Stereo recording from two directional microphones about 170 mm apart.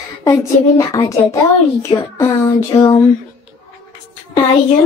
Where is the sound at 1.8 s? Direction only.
20° left (ahead or behind).